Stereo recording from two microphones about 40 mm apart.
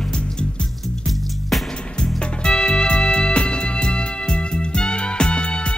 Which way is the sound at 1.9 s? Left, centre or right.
Centre.